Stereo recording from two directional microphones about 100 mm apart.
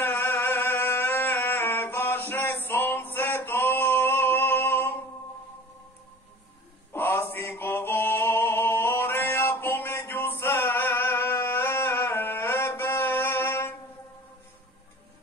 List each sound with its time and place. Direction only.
0.0 s music: 20° left (ahead or behind)
6.9 s male singing: 20° left (ahead or behind)